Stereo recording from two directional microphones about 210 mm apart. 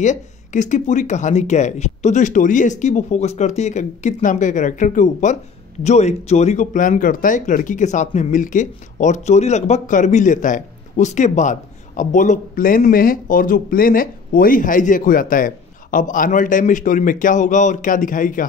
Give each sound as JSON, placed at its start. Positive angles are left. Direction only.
{"t": 0.0, "sound": "speech", "side_deg": 35}